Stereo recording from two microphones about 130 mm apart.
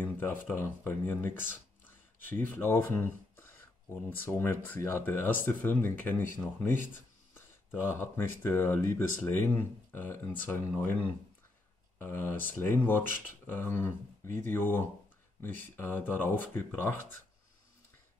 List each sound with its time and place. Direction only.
0.0 s speech: 15° left (ahead or behind)